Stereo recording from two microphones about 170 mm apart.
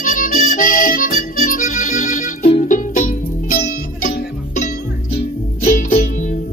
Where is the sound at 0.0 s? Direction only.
55° left (ahead or behind).